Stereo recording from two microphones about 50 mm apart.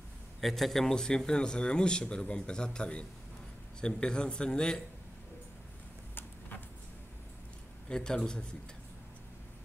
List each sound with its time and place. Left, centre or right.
0.4 s speech: centre
7.9 s speech: centre